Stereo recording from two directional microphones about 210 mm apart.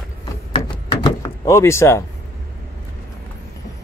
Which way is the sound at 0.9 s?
20° left (ahead or behind).